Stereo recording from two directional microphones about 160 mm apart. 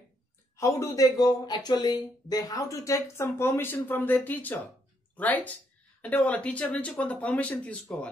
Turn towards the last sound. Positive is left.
turn(degrees=10)  # may be behind; listen again after turning